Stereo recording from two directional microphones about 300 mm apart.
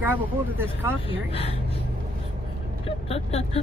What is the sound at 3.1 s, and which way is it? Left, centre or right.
Speech, centre.